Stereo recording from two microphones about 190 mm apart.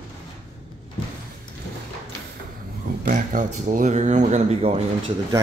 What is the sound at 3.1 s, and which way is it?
Speech, 40° right (ahead or behind).